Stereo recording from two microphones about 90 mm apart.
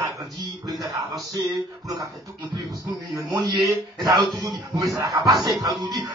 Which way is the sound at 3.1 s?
45° right (ahead or behind).